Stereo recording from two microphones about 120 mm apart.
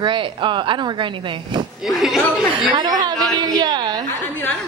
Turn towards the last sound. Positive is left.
turn(degrees=-40)  # may be behind; listen again after turning